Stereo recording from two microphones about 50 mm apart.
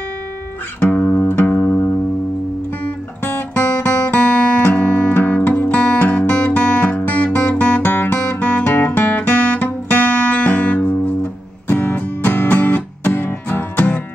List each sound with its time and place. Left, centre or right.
0.7 s music: left
3.3 s guitar: left
4.1 s music: left